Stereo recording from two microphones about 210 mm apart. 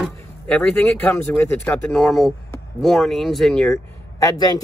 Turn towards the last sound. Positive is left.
turn(degrees=20)  # may be behind; listen again after turning